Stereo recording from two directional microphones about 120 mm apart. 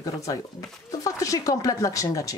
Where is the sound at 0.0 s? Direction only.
30° left (ahead or behind).